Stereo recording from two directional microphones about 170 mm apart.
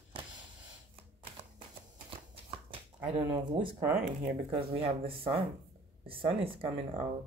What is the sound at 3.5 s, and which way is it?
Speech, 30° right (ahead or behind).